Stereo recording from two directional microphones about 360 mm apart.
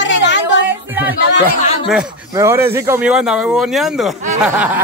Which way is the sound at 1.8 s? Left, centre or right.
Centre.